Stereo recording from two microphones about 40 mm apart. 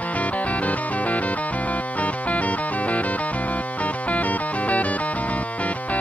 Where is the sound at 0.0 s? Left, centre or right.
Left.